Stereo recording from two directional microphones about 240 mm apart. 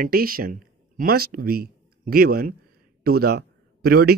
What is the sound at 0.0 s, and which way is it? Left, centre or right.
A man's voice, right.